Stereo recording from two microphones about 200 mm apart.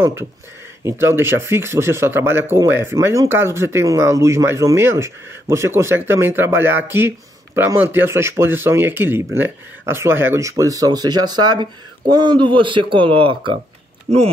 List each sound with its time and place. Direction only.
0.0 s speech: 15° right (ahead or behind)